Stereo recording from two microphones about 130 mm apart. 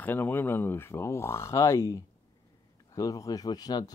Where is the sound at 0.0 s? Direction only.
15° left (ahead or behind).